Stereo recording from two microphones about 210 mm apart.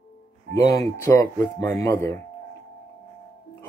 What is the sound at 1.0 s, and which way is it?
Speech, 10° left (ahead or behind).